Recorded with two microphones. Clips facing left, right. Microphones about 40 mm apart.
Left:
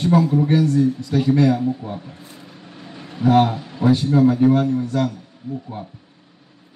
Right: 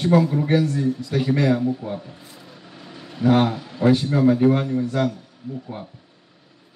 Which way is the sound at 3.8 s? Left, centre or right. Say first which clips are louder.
Left 2 dB; right.